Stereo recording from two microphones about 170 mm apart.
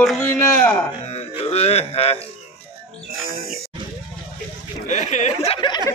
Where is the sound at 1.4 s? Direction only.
35° left (ahead or behind).